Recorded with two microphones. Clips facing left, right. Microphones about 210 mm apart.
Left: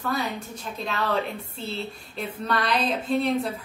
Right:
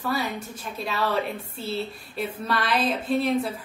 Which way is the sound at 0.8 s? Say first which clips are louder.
Right 1 dB; 5° right (ahead or behind).